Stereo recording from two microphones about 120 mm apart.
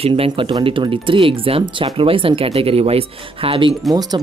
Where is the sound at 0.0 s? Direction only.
50° right (ahead or behind).